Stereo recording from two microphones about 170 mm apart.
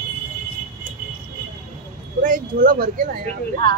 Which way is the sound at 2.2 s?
55° right (ahead or behind).